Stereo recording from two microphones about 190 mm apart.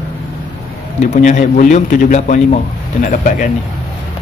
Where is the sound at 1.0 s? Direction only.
40° left (ahead or behind).